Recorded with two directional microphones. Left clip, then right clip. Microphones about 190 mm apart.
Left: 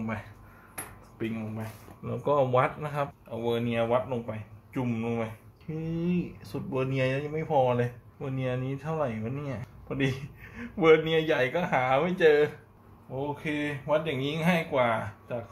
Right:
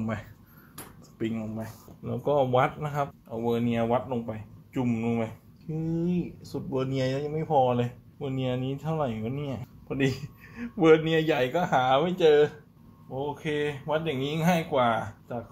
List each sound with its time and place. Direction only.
1.1 s a sound: 45° right (ahead or behind)
2.0 s speech: 25° right (ahead or behind)
3.3 s speech: 45° right (ahead or behind)
5.9 s speech: 25° right (ahead or behind)
13.1 s speech: 35° right (ahead or behind)